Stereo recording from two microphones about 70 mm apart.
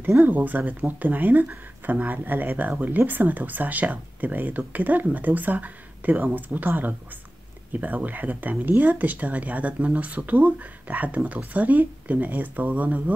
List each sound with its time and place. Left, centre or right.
0.2 s speech: right